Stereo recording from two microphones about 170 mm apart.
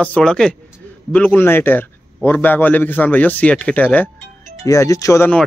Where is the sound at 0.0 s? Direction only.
5° left (ahead or behind).